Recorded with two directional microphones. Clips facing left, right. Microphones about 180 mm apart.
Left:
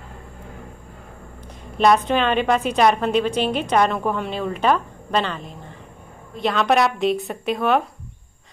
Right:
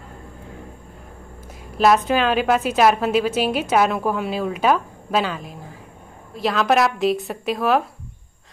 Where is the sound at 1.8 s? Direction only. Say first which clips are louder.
Even; 5° right (ahead or behind).